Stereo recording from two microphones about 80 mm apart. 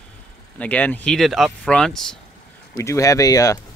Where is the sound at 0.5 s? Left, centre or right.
Centre.